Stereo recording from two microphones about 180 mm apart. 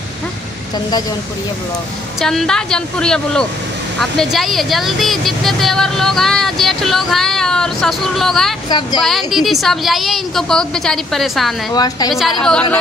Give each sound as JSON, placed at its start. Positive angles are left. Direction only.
{"t": 2.1, "sound": "speech", "side_deg": 0}
{"t": 8.6, "sound": "speech", "side_deg": 25}
{"t": 9.0, "sound": "speech", "side_deg": 0}
{"t": 11.7, "sound": "speech", "side_deg": 20}
{"t": 12.1, "sound": "speech", "side_deg": 0}